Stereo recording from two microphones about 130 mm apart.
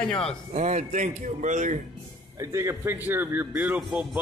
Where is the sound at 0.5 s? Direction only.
65° right (ahead or behind).